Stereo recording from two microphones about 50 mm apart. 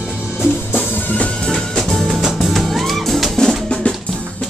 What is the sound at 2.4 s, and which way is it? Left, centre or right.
Music, centre.